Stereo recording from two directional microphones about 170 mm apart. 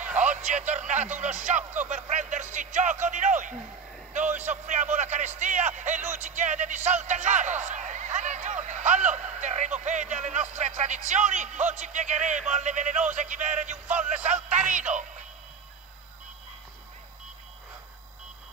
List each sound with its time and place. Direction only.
0.2 s a man's voice: 45° right (ahead or behind)
14.6 s speech: 5° right (ahead or behind)
14.9 s speech: 45° right (ahead or behind)